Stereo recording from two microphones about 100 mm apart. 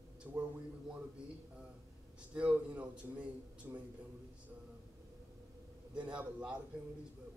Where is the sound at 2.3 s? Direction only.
15° right (ahead or behind).